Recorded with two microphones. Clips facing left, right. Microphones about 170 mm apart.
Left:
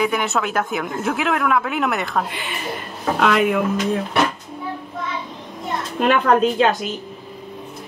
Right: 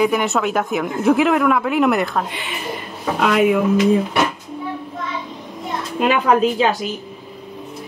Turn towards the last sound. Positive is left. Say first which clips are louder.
# even
turn(degrees=-5)  # may be behind; listen again after turning